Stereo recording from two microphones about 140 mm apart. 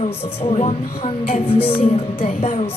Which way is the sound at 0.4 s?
45° left (ahead or behind).